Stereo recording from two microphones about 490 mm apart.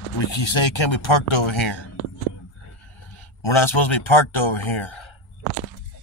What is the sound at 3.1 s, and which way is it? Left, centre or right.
Speech, left.